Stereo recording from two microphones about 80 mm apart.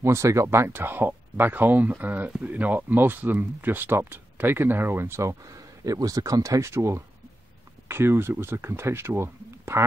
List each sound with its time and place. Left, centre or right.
0.0 s speech: right